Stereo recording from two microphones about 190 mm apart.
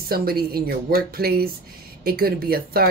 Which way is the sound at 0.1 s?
55° right (ahead or behind).